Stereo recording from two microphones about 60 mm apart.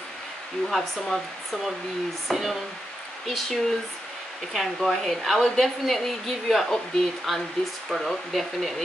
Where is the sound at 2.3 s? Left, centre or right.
Centre.